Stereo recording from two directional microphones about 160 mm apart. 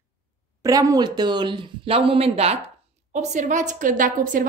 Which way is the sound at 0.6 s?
20° right (ahead or behind).